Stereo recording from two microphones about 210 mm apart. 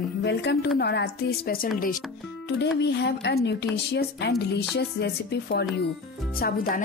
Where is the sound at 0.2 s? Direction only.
55° left (ahead or behind).